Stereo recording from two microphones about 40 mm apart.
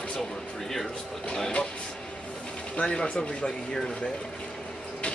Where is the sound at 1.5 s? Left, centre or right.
Left.